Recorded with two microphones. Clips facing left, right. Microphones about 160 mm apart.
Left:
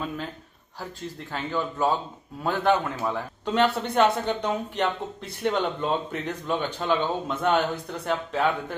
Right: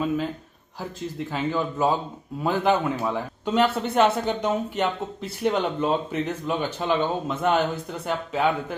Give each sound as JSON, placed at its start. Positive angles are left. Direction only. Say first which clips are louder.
{"t": 1.3, "sound": "a man's voice", "louder": "right 2 dB", "side_deg": -10}